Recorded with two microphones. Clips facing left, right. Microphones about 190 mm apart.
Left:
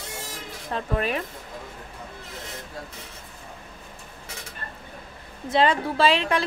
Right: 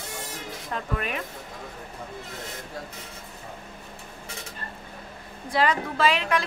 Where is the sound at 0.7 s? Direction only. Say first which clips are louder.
Left 5 dB; 30° left (ahead or behind).